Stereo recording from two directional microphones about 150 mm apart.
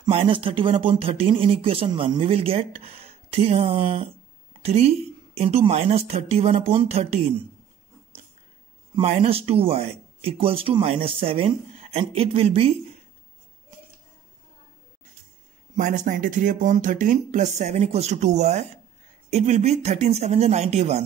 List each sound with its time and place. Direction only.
0.0 s a woman's voice: 35° right (ahead or behind)
8.9 s speech: 45° right (ahead or behind)
15.7 s a woman's voice: 55° right (ahead or behind)